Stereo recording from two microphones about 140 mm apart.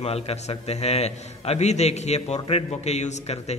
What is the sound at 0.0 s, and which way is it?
A man's voice, 45° left (ahead or behind).